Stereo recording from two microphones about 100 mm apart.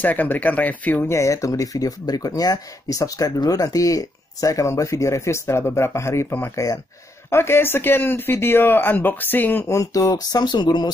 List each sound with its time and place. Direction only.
0.0 s speech: 15° left (ahead or behind)
1.1 s speech: 30° left (ahead or behind)
9.7 s speech: 30° left (ahead or behind)